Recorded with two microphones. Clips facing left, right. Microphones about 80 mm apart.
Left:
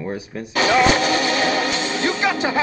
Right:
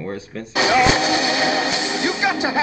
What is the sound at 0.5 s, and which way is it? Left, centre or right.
Speech, centre.